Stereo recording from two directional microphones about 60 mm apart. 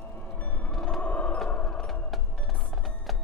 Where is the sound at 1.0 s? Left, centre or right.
Left.